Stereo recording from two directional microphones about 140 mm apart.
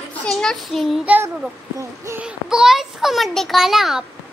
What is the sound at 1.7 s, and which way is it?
Speech, 20° right (ahead or behind).